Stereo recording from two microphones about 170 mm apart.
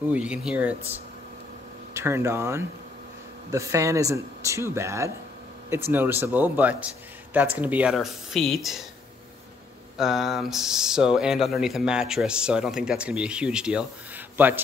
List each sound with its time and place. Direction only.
0.1 s speech: 5° right (ahead or behind)
2.0 s speech: 15° right (ahead or behind)
9.9 s speech: centre (ahead or behind)